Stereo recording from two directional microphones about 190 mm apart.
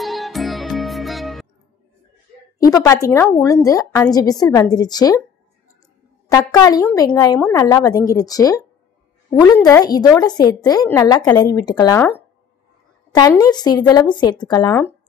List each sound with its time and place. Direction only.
0.0 s music: centre (ahead or behind)
2.6 s a woman's voice: 15° left (ahead or behind)
6.2 s a woman's voice: 20° left (ahead or behind)
13.1 s speech: 20° left (ahead or behind)